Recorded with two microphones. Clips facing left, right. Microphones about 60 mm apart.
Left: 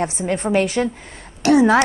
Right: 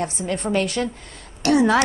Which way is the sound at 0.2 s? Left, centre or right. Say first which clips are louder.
Left 4 dB; left.